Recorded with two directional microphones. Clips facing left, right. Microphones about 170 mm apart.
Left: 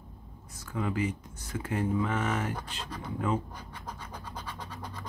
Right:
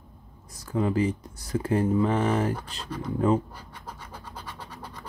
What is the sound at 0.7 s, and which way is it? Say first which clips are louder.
Speech: right 6 dB; 35° right (ahead or behind).